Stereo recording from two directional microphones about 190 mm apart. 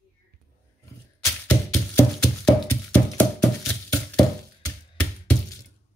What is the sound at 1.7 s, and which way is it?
Music, 5° left (ahead or behind).